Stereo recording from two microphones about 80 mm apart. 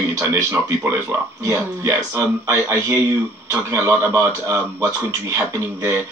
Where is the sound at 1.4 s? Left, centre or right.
Right.